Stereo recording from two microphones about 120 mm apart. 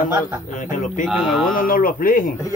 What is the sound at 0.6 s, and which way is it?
Speech, 90° left.